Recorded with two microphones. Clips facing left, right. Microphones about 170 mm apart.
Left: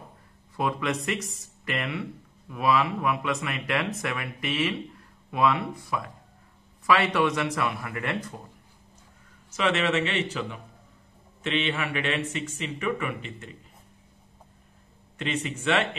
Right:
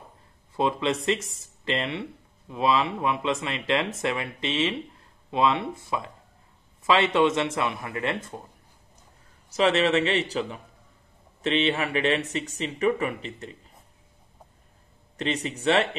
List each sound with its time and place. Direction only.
0.6 s speech: 25° right (ahead or behind)
9.5 s speech: 35° right (ahead or behind)
15.1 s speech: 35° right (ahead or behind)